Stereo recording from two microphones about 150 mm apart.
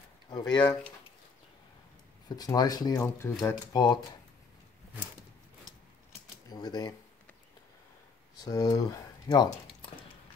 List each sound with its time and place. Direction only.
0.3 s speech: 30° left (ahead or behind)
2.2 s speech: 25° left (ahead or behind)
6.5 s speech: 25° left (ahead or behind)
8.4 s speech: 25° left (ahead or behind)